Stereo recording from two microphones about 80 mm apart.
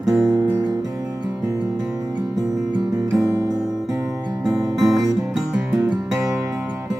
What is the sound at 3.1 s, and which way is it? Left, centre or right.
Music, right.